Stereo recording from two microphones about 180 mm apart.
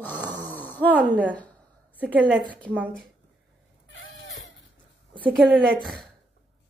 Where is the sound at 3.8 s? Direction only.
90° left.